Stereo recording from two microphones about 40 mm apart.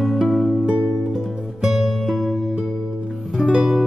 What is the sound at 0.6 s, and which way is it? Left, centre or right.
Music, right.